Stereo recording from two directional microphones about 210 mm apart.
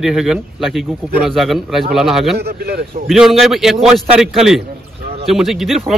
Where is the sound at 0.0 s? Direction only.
Centre (ahead or behind).